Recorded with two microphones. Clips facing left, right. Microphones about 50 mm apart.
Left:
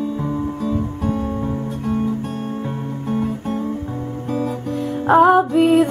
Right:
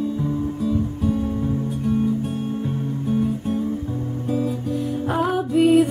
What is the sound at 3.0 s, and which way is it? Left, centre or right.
Music, left.